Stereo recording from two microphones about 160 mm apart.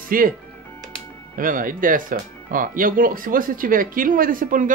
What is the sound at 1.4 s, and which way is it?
Speech, 60° right (ahead or behind).